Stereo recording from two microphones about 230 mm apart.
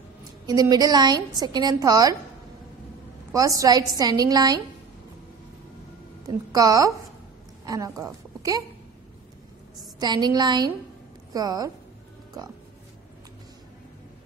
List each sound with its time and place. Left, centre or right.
0.5 s a woman's voice: centre
3.3 s a woman's voice: centre
6.2 s a woman's voice: centre
9.9 s a woman's voice: centre